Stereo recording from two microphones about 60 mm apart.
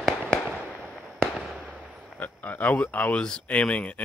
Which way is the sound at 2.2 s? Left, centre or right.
Left.